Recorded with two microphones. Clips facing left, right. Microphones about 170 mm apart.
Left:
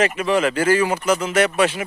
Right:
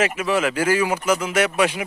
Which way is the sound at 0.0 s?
5° right (ahead or behind).